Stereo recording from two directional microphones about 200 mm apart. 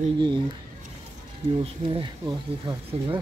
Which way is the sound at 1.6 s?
25° right (ahead or behind).